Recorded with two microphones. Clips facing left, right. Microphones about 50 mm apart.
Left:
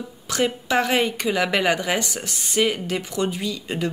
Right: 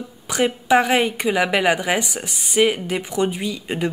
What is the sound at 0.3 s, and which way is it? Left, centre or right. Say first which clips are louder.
A woman's voice: right 5 dB; centre.